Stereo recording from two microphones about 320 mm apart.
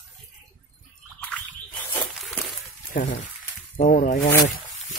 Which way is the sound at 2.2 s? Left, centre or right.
Centre.